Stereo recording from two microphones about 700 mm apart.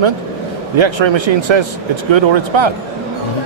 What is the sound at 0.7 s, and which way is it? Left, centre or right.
A man's voice, right.